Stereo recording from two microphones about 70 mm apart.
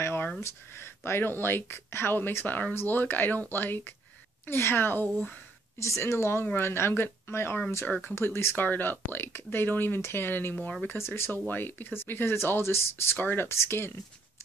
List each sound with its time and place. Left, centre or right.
0.0 s a sound: left
0.4 s speech: left
5.1 s speech: centre
5.8 s speech: left
8.1 s speech: left
11.0 s speech: left